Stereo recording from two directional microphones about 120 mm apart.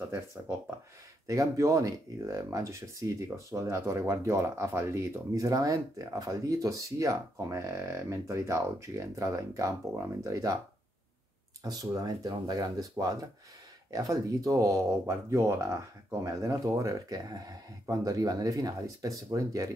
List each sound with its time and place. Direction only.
1.2 s speech: 25° right (ahead or behind)
11.6 s speech: 30° right (ahead or behind)